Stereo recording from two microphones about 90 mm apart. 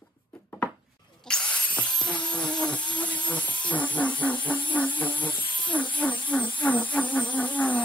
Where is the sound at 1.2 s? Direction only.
10° left (ahead or behind).